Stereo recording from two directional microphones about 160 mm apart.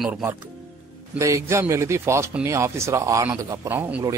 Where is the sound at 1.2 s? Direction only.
20° right (ahead or behind).